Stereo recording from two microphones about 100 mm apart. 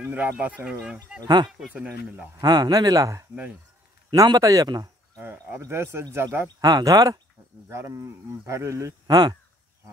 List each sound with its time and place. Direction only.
0.0 s speech: 15° right (ahead or behind)
1.2 s speech: 45° right (ahead or behind)
1.7 s speech: 10° right (ahead or behind)
2.4 s speech: 40° right (ahead or behind)
5.2 s speech: 25° right (ahead or behind)
6.6 s speech: 40° right (ahead or behind)
9.0 s speech: 40° right (ahead or behind)